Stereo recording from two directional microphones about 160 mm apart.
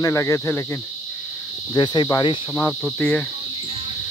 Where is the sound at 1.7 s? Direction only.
30° left (ahead or behind).